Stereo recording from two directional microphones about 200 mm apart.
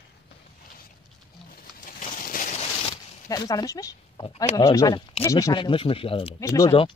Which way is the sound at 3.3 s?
20° left (ahead or behind).